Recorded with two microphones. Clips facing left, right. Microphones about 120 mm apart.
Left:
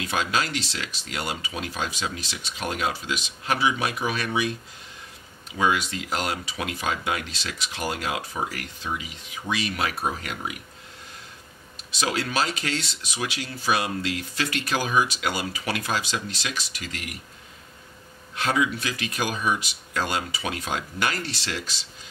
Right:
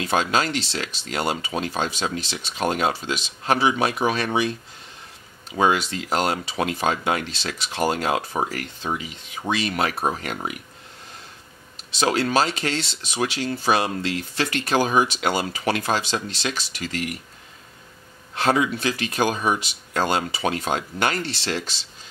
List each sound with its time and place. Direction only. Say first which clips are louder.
0.0 s speech: right 4 dB; 30° right (ahead or behind)
5.6 s speech: right 3 dB; 35° right (ahead or behind)
11.9 s speech: right 6 dB; 30° right (ahead or behind)
18.3 s speech: right 4 dB; 35° right (ahead or behind)